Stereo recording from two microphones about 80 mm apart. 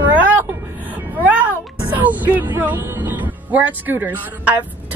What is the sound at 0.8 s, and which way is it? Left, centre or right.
Music, centre.